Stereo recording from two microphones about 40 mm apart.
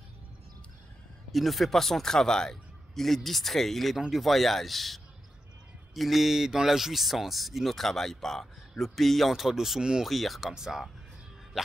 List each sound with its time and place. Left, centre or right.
1.3 s speech: centre
10.0 s speech: centre
10.5 s speech: centre